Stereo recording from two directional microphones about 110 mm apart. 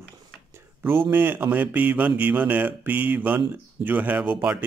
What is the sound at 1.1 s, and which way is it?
Mantra, 20° right (ahead or behind).